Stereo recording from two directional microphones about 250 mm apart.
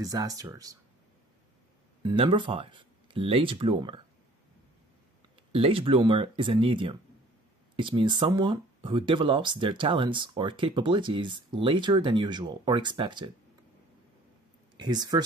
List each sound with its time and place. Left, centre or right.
0.0 s speech: centre
2.0 s speech: centre
5.5 s speech: right
14.8 s speech: centre